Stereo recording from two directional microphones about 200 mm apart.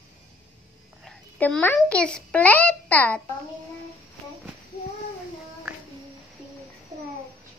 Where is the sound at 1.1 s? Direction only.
5° left (ahead or behind).